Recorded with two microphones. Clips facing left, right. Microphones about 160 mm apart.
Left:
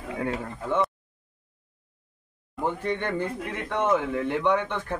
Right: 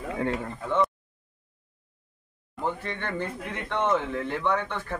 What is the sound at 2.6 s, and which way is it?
Speech, 15° left (ahead or behind).